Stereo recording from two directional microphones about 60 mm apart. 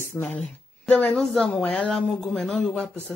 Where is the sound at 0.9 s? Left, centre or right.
Left.